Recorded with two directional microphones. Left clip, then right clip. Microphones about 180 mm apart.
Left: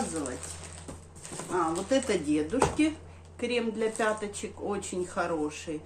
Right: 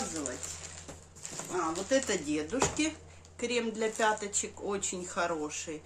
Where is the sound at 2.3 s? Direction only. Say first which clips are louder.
Left 5 dB; 15° right (ahead or behind).